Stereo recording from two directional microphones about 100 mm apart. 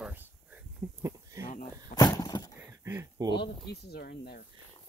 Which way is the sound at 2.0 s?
40° left (ahead or behind).